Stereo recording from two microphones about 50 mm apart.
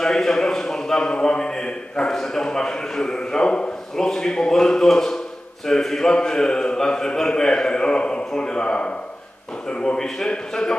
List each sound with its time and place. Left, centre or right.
0.0 s a man's voice: centre
9.9 s a man's voice: centre